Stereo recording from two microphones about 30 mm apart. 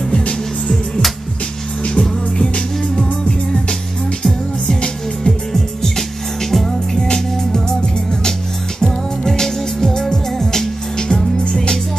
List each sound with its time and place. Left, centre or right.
2.0 s music: left; by 7.1 s centre
8.2 s music: left